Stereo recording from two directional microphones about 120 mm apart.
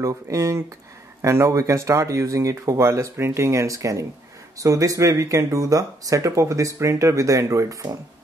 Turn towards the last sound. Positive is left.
turn(degrees=-30)  # may be behind; listen again after turning